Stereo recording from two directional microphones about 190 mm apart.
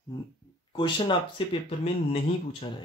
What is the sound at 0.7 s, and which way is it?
Speech, 25° left (ahead or behind).